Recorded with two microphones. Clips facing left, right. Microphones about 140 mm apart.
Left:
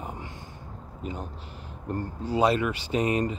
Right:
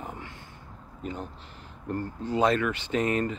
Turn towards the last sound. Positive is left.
turn(degrees=15)  # may be behind; listen again after turning